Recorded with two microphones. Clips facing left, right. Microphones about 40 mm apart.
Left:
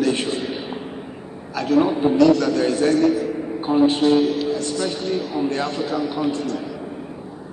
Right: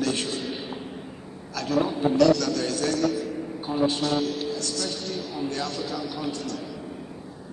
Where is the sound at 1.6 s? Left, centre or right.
Left.